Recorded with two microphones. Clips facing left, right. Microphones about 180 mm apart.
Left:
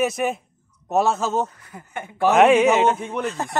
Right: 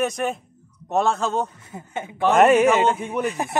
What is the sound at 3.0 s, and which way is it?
Speech, 10° right (ahead or behind).